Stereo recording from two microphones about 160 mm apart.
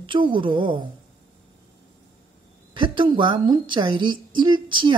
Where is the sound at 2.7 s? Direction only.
30° right (ahead or behind).